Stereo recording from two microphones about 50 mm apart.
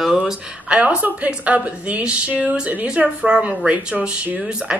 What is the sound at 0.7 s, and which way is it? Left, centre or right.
A woman's voice, right.